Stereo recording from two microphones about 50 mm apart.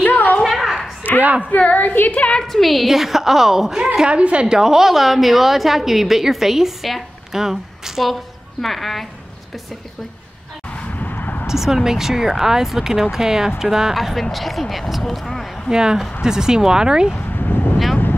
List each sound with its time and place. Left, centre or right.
0.0 s a sound: left
0.4 s a sound: centre
1.2 s speech: right
1.5 s a woman's voice: left
2.4 s a woman's voice: centre; by 4.6 s right
4.6 s a woman's voice: centre
10.8 s vehicle: left
11.4 s a woman's voice: centre
15.7 s a woman's voice: centre
17.1 s a sound: left